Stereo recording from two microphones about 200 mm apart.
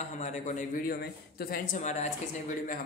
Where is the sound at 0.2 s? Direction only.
35° left (ahead or behind).